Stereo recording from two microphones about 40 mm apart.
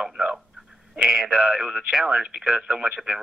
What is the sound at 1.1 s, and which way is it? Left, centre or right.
Speech, centre.